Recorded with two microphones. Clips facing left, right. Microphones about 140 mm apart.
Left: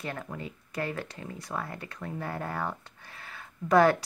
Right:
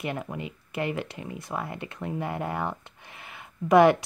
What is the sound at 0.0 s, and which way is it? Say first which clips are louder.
A woman's voice: right 4 dB; 15° right (ahead or behind).